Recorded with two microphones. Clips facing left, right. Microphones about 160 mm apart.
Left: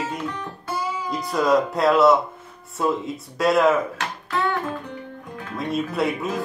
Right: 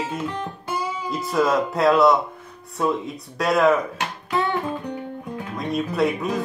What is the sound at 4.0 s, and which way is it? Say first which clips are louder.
Music: right 1 dB; 15° right (ahead or behind).